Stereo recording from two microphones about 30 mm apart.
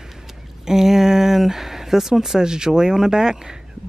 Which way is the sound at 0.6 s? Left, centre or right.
Centre.